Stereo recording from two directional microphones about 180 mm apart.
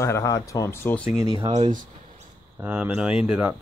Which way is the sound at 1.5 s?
45° right (ahead or behind).